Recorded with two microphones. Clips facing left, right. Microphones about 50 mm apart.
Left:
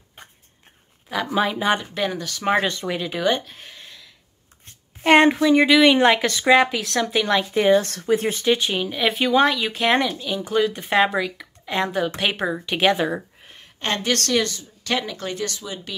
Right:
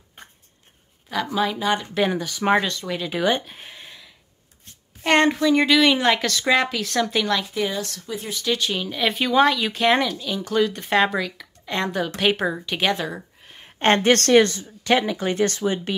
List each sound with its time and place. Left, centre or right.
1.0 s a sound: centre
1.3 s speech: centre
2.0 s speech: centre
2.6 s speech: centre
3.0 s speech: centre
3.3 s a sound: centre
5.0 s speech: centre
7.5 s speech: left
8.0 s speech: left
8.5 s speech: centre
13.0 s a sound: centre
13.7 s speech: right
15.3 s speech: right